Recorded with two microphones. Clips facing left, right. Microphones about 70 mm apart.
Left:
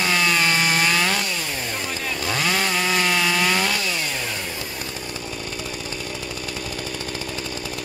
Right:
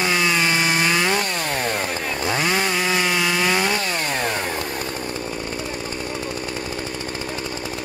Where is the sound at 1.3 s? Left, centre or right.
Right.